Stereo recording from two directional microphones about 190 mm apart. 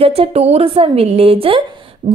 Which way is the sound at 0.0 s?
30° right (ahead or behind).